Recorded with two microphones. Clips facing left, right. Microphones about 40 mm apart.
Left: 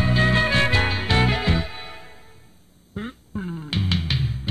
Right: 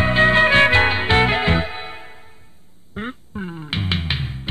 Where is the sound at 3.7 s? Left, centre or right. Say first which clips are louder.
Right 2 dB; right.